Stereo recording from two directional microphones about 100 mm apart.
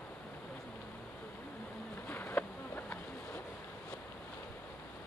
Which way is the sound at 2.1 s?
20° left (ahead or behind).